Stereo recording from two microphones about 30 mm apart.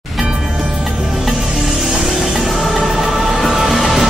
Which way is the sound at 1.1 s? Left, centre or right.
Centre.